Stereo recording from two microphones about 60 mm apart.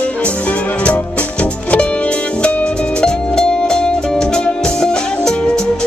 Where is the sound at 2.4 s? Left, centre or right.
Centre.